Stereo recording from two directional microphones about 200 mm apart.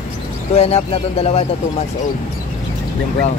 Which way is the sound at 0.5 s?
30° left (ahead or behind).